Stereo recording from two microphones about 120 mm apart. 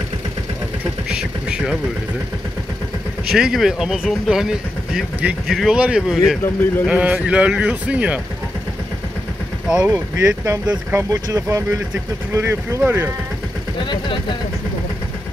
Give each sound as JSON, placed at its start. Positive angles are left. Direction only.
{"t": 1.0, "sound": "a sound", "side_deg": -5}
{"t": 3.3, "sound": "speech", "side_deg": -5}
{"t": 9.7, "sound": "speech", "side_deg": -10}
{"t": 9.9, "sound": "speech", "side_deg": -25}
{"t": 13.8, "sound": "speech", "side_deg": 45}